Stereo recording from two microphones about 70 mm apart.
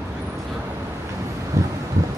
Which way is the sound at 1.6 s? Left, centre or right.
Right.